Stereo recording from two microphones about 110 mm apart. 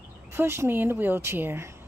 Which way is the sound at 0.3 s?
25° right (ahead or behind).